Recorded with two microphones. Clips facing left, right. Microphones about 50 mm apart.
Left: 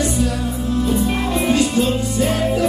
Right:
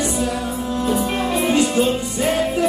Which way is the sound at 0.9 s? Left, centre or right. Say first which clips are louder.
Left 1 dB; centre.